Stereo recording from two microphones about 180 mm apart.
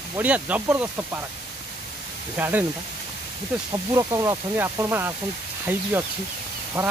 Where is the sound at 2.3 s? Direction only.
10° right (ahead or behind).